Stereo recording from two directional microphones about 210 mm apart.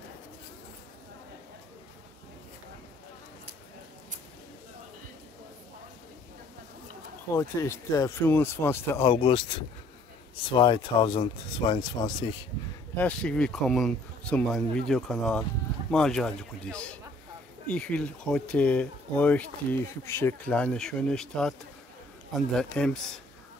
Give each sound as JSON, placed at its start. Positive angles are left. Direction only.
{"t": 7.3, "sound": "speech", "side_deg": 15}
{"t": 10.5, "sound": "speech", "side_deg": 20}
{"t": 12.9, "sound": "speech", "side_deg": 5}